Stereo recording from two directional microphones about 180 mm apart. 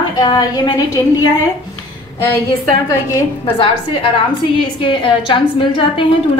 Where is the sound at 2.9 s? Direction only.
15° left (ahead or behind).